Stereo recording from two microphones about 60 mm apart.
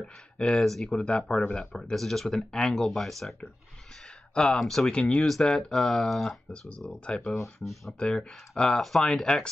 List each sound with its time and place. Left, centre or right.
0.0 s speech: centre
0.6 s speech: centre
1.0 s speech: centre
4.4 s speech: centre
4.9 s speech: centre
5.2 s speech: centre
7.3 s speech: centre
8.0 s speech: centre